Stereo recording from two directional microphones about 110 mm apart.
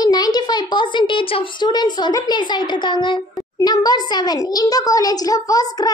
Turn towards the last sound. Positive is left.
turn(degrees=35)  # may be behind; listen again after turning